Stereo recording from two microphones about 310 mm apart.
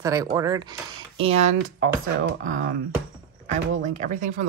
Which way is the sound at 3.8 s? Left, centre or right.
Right.